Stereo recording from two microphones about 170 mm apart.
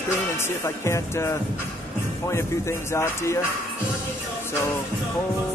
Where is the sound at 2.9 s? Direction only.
15° left (ahead or behind).